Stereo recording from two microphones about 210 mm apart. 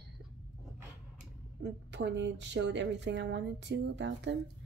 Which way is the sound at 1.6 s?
55° right (ahead or behind).